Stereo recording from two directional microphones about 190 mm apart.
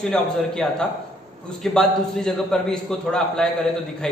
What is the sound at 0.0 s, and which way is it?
A man's voice, 5° left (ahead or behind).